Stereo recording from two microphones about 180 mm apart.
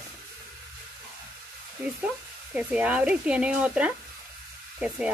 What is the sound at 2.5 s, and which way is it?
A woman's voice, 5° right (ahead or behind).